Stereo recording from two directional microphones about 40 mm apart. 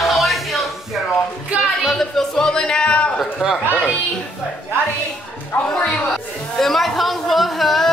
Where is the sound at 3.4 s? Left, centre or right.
Centre.